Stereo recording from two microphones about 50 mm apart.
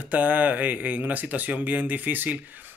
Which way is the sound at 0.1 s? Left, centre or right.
Right.